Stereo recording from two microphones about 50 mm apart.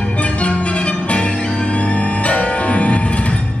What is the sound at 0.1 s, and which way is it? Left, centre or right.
Music, left.